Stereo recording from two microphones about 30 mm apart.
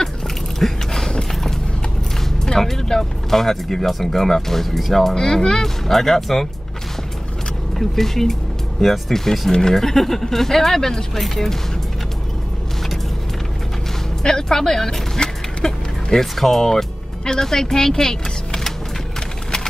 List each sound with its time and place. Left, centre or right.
0.6 s mechanisms: centre
2.4 s vehicle: centre
3.3 s speech: centre
5.1 s speech: left
5.9 s speech: centre
7.9 s speech: centre
9.8 s speech: centre
14.2 s speech: centre
15.2 s a sound: left
15.6 s a sound: centre
16.3 s speech: centre
17.2 s speech: centre